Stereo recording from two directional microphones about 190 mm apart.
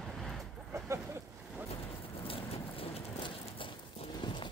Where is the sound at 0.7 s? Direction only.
15° right (ahead or behind).